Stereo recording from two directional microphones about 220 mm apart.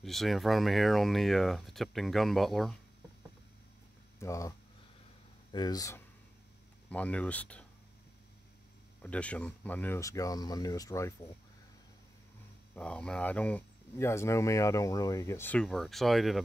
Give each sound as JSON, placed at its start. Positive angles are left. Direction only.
{"t": 0.0, "sound": "speech", "side_deg": 0}
{"t": 4.2, "sound": "speech", "side_deg": 15}
{"t": 9.0, "sound": "speech", "side_deg": 5}
{"t": 12.7, "sound": "speech", "side_deg": 5}